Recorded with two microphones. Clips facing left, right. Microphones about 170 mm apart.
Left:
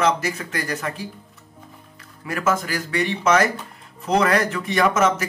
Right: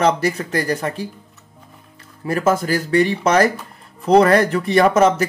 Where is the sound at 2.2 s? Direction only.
35° right (ahead or behind).